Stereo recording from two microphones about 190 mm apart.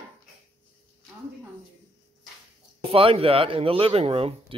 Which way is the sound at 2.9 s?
30° right (ahead or behind).